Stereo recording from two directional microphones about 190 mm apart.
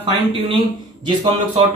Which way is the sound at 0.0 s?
30° right (ahead or behind).